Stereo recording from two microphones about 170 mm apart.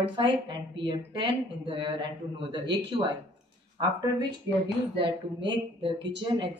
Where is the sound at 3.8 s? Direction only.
25° right (ahead or behind).